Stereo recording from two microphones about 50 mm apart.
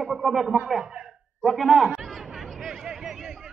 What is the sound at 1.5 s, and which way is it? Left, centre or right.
Speech, centre.